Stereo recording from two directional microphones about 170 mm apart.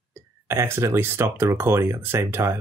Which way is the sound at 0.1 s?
15° right (ahead or behind).